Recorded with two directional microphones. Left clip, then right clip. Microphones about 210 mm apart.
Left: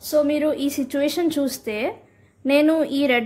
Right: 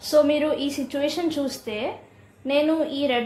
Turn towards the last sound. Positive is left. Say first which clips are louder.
# left 3 dB
turn(degrees=45)  # may be behind; listen again after turning